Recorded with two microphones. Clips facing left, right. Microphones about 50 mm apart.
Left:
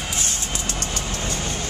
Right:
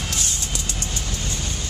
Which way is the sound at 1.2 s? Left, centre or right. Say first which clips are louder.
Left 3 dB; left.